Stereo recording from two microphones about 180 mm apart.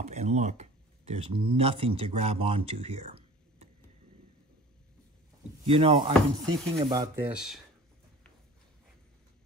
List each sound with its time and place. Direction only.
0.0 s speech: 40° right (ahead or behind)
5.7 s speech: 30° right (ahead or behind)
7.2 s speech: 5° right (ahead or behind)